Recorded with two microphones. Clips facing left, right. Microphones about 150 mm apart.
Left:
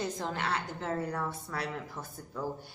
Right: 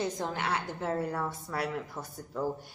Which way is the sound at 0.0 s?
10° right (ahead or behind).